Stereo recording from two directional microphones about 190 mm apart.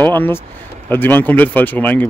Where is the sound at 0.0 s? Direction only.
10° left (ahead or behind).